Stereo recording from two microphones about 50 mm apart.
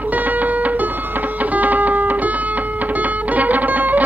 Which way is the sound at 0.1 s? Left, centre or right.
Right.